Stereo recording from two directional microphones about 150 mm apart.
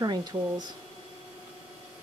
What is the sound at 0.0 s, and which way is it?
Speech, 30° right (ahead or behind).